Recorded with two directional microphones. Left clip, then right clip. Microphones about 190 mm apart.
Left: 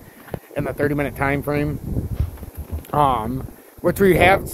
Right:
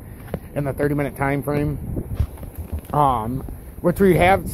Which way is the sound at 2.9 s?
20° left (ahead or behind).